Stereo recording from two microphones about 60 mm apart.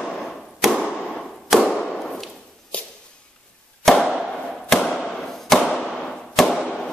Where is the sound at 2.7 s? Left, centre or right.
Left.